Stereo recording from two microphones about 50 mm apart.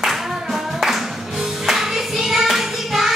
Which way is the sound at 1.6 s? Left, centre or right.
Centre.